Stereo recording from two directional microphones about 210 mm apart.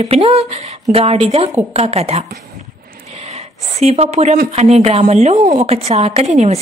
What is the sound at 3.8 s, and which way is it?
A woman's voice, 30° right (ahead or behind).